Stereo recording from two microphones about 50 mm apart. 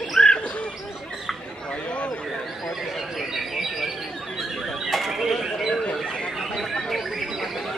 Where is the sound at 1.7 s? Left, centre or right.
Left.